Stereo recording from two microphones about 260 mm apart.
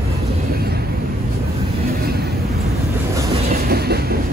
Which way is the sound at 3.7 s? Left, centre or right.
Right.